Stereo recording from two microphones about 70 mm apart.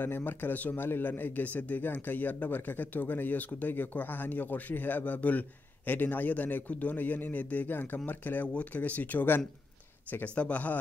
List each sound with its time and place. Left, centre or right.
0.0 s speech: left